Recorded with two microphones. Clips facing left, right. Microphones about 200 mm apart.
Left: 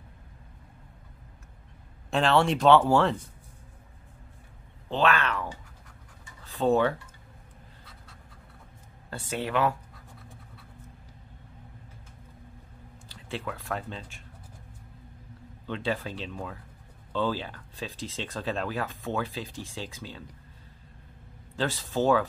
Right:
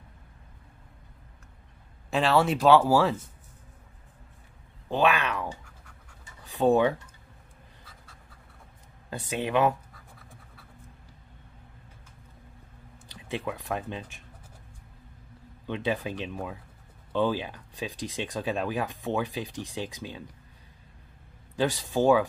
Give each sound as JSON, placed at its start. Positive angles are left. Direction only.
{"t": 2.0, "sound": "speech", "side_deg": -5}
{"t": 4.8, "sound": "speech", "side_deg": -10}
{"t": 9.1, "sound": "speech", "side_deg": -15}
{"t": 13.1, "sound": "speech", "side_deg": -15}
{"t": 15.6, "sound": "speech", "side_deg": -15}
{"t": 21.5, "sound": "speech", "side_deg": -15}